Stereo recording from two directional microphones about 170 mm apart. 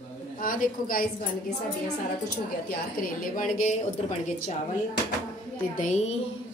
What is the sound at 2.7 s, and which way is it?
A woman's voice, 55° left (ahead or behind).